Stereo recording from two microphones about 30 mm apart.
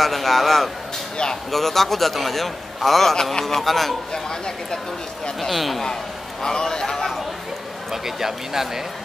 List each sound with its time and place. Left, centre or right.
0.0 s a man's voice: centre
4.1 s speech: left
5.5 s a man's voice: centre
6.4 s speech: left
7.9 s speech: centre